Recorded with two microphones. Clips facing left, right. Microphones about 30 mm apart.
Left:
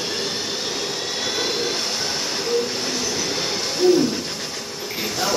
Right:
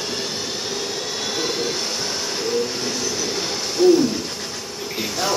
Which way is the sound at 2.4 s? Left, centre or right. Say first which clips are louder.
Even; centre.